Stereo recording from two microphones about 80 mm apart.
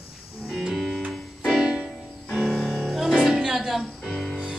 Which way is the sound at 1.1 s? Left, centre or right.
Centre.